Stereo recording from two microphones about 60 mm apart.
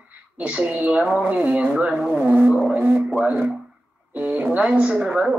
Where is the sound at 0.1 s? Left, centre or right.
Right.